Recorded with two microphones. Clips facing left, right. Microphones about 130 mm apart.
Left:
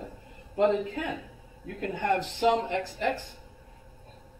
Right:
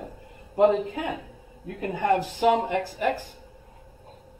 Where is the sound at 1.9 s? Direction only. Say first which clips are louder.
Right 5 dB; 50° right (ahead or behind).